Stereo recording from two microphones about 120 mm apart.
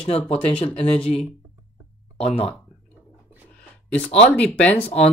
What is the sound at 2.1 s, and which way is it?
Speech, 55° left (ahead or behind).